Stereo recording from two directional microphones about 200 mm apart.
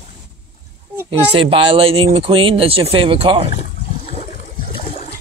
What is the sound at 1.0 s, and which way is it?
Speech, 25° right (ahead or behind).